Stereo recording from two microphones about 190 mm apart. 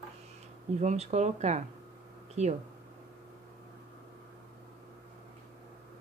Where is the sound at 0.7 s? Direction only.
35° right (ahead or behind).